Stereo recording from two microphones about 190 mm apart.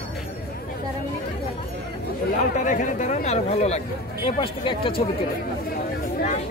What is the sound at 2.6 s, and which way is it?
Speech, 40° left (ahead or behind).